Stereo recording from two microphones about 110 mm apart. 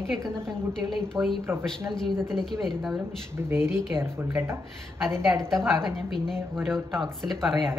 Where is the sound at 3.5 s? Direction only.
25° right (ahead or behind).